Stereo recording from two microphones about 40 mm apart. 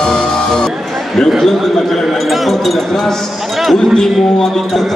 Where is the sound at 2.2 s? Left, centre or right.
Centre.